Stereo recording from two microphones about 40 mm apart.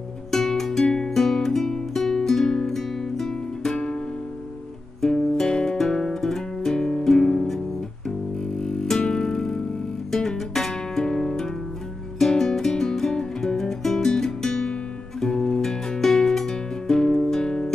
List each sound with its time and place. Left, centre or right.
0.3 s music: centre
5.0 s music: centre